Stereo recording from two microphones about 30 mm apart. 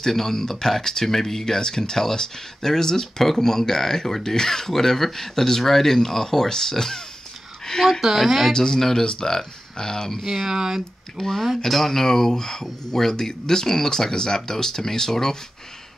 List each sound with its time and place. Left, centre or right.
0.0 s speech: centre
8.0 s speech: centre
8.5 s speech: centre
10.2 s speech: centre
11.2 s speech: left